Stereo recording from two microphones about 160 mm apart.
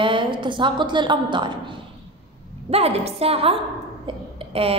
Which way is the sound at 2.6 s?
40° right (ahead or behind).